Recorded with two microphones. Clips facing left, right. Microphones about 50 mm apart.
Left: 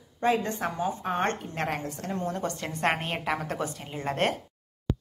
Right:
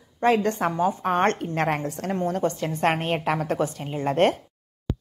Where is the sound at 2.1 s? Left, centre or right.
Right.